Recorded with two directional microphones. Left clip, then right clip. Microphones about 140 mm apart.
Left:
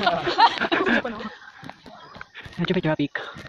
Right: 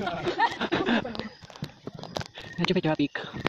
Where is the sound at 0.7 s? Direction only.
20° right (ahead or behind).